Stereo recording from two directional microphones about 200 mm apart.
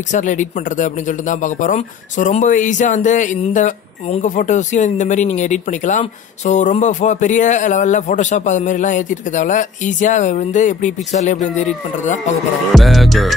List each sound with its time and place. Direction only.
0.1 s speech: 40° left (ahead or behind)
12.7 s music: centre (ahead or behind)